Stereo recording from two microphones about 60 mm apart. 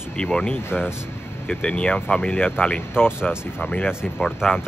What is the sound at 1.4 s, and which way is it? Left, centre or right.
Speech, centre.